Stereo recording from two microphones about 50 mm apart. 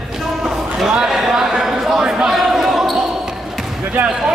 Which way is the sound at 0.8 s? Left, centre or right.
Centre.